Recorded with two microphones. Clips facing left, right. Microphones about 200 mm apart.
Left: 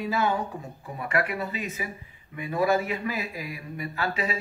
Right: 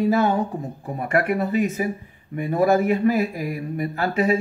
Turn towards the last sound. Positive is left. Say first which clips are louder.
# right 9 dB
turn(degrees=-50)  # may be behind; listen again after turning